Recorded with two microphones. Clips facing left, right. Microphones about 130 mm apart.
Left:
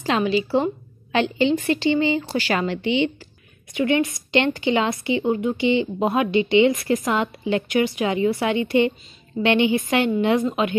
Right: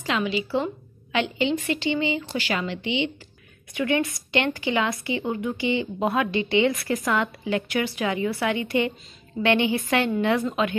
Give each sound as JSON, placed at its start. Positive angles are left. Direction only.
{"t": 0.0, "sound": "a woman's voice", "side_deg": 35}
{"t": 3.7, "sound": "a woman's voice", "side_deg": 20}